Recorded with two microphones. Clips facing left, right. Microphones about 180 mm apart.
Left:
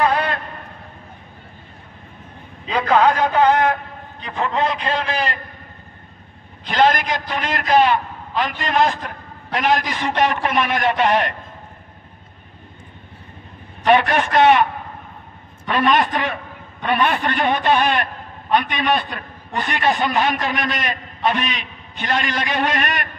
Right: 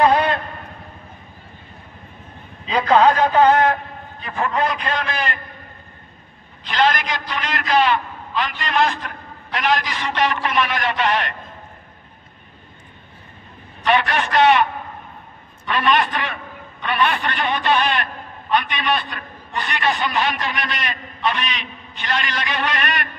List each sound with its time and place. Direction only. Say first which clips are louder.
0.0 s a sound: right 3 dB; 20° right (ahead or behind)
2.7 s a man's voice: right 1 dB; 10° left (ahead or behind); by 5.4 s 35° left (ahead or behind)
6.6 s a man's voice: left 3 dB; 50° left (ahead or behind)
13.8 s a man's voice: left 4 dB; 50° left (ahead or behind)
15.6 s a man's voice: left 2 dB; 45° left (ahead or behind)